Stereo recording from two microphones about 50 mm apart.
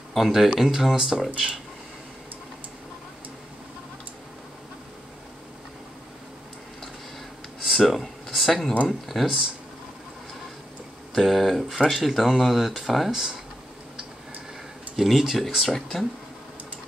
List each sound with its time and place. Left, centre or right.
0.1 s speech: centre
7.6 s a sound: centre
8.8 s speech: centre
11.1 s speech: centre
15.0 s speech: centre